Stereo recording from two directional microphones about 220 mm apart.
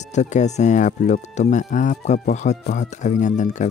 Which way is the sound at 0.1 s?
35° left (ahead or behind).